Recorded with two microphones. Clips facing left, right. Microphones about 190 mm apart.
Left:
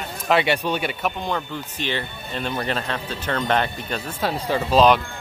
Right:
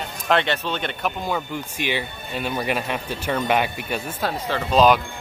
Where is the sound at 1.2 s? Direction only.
10° right (ahead or behind).